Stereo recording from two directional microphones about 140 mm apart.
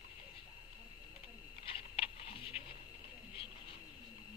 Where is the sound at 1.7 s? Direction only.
40° left (ahead or behind).